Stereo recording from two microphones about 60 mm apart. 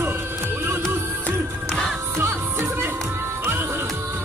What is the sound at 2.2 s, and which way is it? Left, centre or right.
Music, right.